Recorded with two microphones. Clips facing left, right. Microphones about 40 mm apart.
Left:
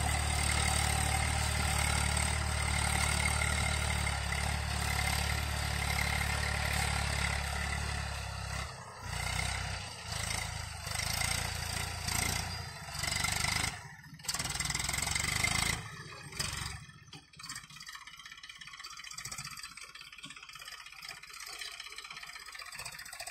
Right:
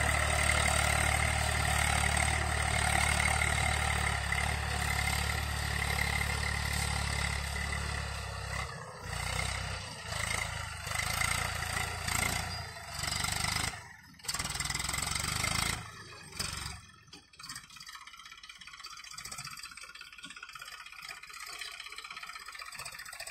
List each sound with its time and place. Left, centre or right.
0.0 s vehicle: right
1.1 s vehicle: right
2.3 s vehicle: centre
2.7 s vehicle: right
3.5 s vehicle: right
4.5 s vehicle: centre
10.2 s a sound: right
10.8 s vehicle: right
12.1 s roar: right
12.4 s roar: centre
14.2 s a sound: centre
16.3 s vehicle: centre